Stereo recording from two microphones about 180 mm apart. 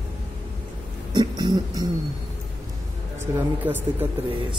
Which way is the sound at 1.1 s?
25° right (ahead or behind).